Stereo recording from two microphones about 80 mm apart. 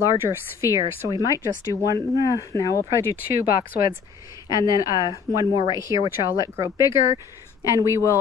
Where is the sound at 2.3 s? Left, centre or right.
Left.